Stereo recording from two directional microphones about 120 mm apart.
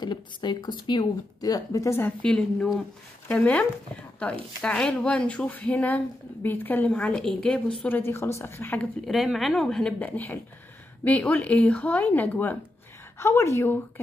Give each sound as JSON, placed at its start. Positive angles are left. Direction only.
{"t": 0.0, "sound": "a woman's voice", "side_deg": 40}
{"t": 2.2, "sound": "a woman's voice", "side_deg": 5}
{"t": 9.0, "sound": "speech", "side_deg": 0}